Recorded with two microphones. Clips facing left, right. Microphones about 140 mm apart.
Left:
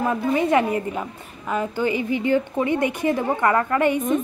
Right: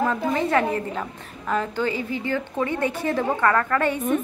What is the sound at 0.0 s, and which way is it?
A woman's voice, 15° left (ahead or behind).